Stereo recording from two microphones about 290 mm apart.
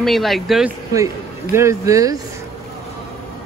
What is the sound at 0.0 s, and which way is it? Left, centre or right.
A man's voice, centre.